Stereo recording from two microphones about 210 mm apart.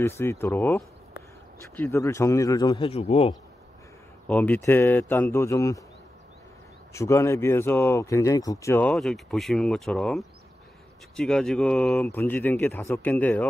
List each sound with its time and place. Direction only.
0.0 s speech: 10° left (ahead or behind); by 3.3 s 30° left (ahead or behind)
4.3 s speech: 5° left (ahead or behind)
6.9 s speech: 15° left (ahead or behind)